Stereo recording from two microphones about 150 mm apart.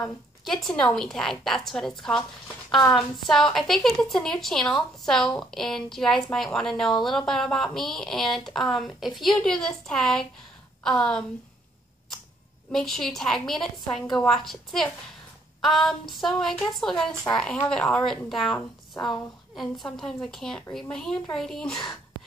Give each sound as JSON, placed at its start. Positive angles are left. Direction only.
{"t": 0.5, "sound": "a woman's voice", "side_deg": 5}
{"t": 12.7, "sound": "a woman's voice", "side_deg": 5}
{"t": 18.9, "sound": "a woman's voice", "side_deg": 25}
{"t": 19.5, "sound": "a woman's voice", "side_deg": 0}